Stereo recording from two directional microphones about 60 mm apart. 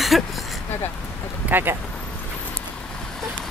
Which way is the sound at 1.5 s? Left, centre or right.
Right.